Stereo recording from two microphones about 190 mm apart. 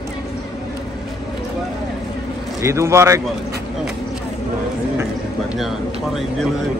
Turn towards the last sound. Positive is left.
turn(degrees=0)  # may be behind; listen again after turning